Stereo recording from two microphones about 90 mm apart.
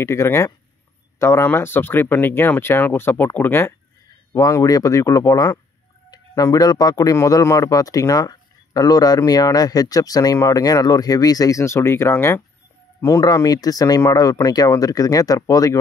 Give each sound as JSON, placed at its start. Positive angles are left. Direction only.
{"t": 0.0, "sound": "speech", "side_deg": 30}
{"t": 4.3, "sound": "speech", "side_deg": 40}
{"t": 13.3, "sound": "speech", "side_deg": 45}